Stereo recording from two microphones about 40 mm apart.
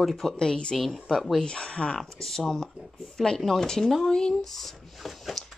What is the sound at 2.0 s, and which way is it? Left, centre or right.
Speech, centre.